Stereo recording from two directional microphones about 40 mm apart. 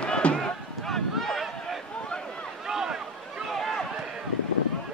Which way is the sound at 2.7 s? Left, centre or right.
Centre.